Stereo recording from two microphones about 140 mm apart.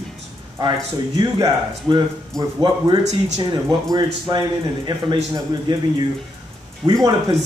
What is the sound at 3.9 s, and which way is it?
A man's voice, 30° right (ahead or behind).